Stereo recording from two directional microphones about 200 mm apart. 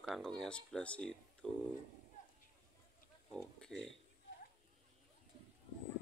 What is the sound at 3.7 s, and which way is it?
Speech, 5° left (ahead or behind).